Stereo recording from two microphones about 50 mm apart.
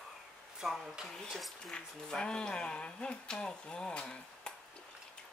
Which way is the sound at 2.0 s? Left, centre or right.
Centre.